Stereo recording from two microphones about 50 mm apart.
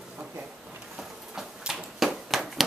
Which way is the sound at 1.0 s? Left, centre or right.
Centre.